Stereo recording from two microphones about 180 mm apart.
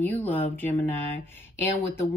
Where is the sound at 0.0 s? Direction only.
10° left (ahead or behind).